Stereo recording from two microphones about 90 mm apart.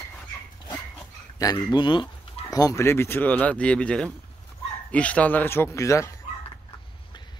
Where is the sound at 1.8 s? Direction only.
65° left (ahead or behind).